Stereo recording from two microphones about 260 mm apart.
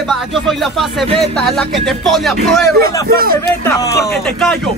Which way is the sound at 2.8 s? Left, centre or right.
Right.